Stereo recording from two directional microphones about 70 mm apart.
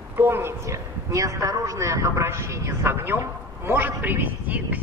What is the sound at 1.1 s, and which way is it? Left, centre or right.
A man's voice, right.